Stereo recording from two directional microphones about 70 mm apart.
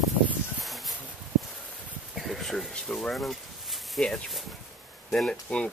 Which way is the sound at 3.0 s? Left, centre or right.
Centre.